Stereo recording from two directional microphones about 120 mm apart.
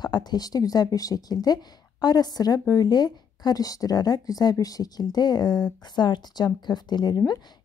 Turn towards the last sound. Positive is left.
turn(degrees=35)  # may be behind; listen again after turning